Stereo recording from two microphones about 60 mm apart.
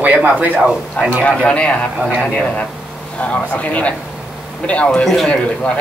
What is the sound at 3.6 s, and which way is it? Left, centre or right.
A man's voice, left.